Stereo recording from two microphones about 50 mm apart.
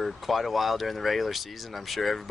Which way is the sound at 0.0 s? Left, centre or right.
Centre.